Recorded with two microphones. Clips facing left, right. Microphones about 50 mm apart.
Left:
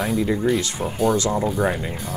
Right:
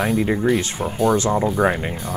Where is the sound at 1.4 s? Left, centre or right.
Centre.